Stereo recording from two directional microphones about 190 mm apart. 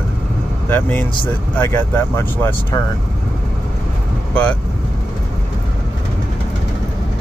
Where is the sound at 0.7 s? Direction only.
10° left (ahead or behind).